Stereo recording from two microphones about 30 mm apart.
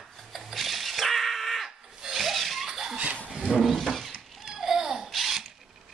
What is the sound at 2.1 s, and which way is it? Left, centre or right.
Chuckle, centre.